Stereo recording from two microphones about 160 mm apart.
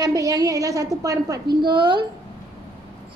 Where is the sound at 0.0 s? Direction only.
20° right (ahead or behind).